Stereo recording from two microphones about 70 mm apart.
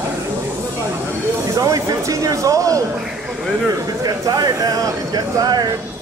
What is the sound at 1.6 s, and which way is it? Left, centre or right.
Speech, right.